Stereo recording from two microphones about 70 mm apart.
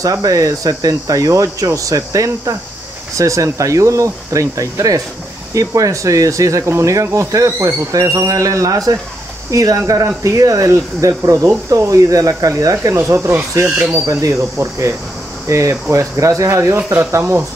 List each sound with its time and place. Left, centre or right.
0.0 s speech: right
12.9 s speech: right